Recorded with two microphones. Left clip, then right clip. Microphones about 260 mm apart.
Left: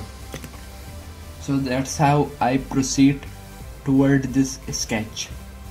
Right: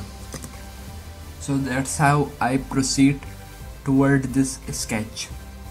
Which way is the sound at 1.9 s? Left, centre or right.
Right.